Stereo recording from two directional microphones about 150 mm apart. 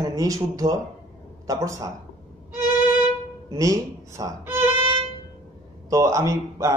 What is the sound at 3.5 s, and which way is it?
A man's voice, 20° right (ahead or behind).